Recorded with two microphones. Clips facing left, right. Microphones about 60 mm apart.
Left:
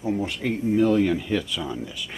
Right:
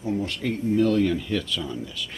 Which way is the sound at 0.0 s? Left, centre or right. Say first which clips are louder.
Left 1 dB; centre.